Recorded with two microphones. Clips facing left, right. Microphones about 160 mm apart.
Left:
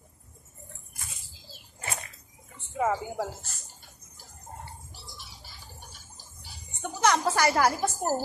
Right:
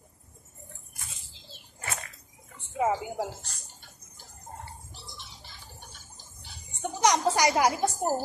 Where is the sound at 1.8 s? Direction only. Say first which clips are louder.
Even; 25° left (ahead or behind).